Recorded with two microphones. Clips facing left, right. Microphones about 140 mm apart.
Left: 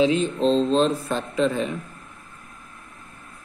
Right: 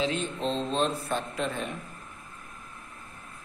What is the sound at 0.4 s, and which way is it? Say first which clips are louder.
Speech: left 9 dB; 90° left.